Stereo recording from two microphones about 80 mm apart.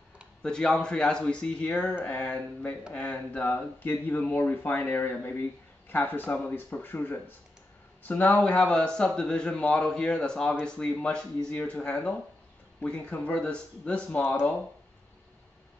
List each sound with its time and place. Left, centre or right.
0.4 s speech: centre